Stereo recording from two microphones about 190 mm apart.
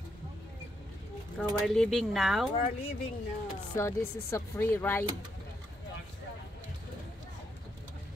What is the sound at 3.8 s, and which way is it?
Speech, 15° left (ahead or behind).